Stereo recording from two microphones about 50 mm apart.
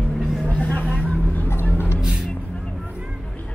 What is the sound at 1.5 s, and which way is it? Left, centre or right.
Music, left.